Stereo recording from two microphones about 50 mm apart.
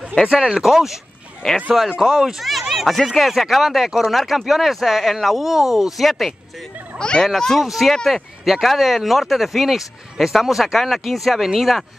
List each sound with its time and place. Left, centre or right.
0.3 s speech: centre
7.0 s speech: centre
7.6 s speech: centre